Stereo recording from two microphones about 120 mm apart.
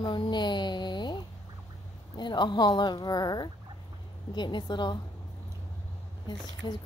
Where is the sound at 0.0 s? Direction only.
40° left (ahead or behind).